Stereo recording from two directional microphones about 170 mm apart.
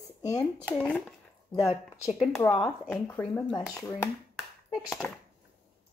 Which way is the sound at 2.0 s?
Centre (ahead or behind).